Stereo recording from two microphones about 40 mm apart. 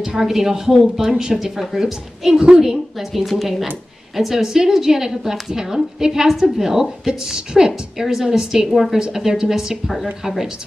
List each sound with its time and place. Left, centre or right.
0.0 s a woman's voice: centre
3.0 s a woman's voice: centre
4.2 s a woman's voice: centre
8.7 s a woman's voice: centre